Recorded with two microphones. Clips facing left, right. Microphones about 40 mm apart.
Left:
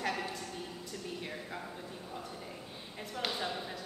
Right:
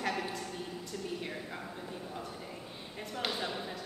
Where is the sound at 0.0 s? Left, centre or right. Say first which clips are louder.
Right 1 dB; centre.